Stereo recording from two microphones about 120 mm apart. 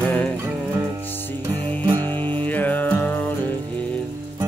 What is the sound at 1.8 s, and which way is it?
Music, 40° right (ahead or behind).